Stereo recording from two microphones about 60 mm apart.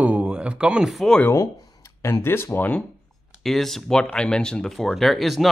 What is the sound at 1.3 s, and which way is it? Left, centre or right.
Speech, left.